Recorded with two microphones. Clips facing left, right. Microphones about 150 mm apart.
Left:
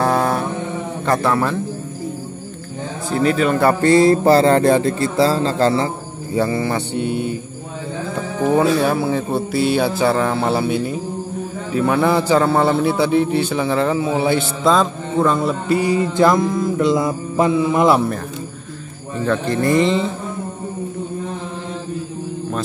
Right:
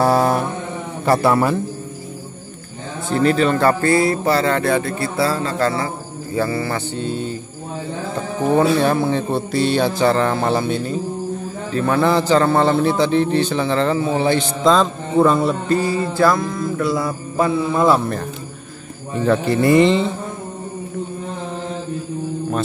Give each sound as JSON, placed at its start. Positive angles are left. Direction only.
{"t": 0.0, "sound": "a sound", "side_deg": -10}
{"t": 1.0, "sound": "a man's voice", "side_deg": -5}
{"t": 3.1, "sound": "a man's voice", "side_deg": 5}
{"t": 8.5, "sound": "a man's voice", "side_deg": 5}
{"t": 15.7, "sound": "a man's voice", "side_deg": 15}
{"t": 19.2, "sound": "speech", "side_deg": -10}